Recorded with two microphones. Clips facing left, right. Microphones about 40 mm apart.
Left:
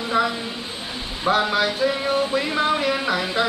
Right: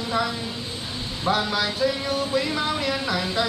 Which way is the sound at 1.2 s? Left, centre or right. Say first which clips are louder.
Left 4 dB; left.